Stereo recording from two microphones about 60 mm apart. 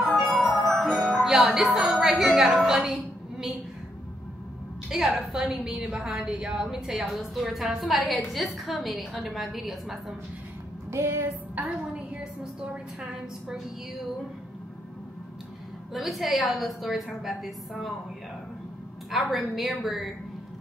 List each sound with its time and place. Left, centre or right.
0.0 s music: centre
1.5 s a woman's voice: centre
4.8 s a woman's voice: centre
10.9 s a sound: right
11.5 s a woman's voice: right
12.2 s a woman's voice: centre
15.9 s a woman's voice: centre
19.0 s a woman's voice: centre